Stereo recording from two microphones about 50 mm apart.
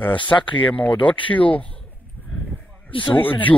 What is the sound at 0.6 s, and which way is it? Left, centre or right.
Speech, left.